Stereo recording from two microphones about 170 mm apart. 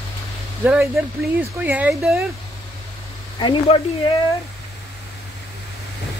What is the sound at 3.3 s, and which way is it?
Speech, 25° left (ahead or behind).